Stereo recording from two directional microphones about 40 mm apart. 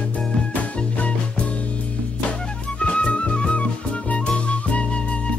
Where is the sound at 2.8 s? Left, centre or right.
Left.